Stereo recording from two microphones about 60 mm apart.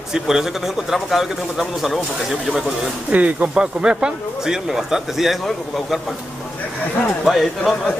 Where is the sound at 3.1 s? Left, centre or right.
Right.